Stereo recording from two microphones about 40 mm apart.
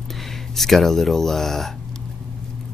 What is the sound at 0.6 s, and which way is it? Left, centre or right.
Speech, centre.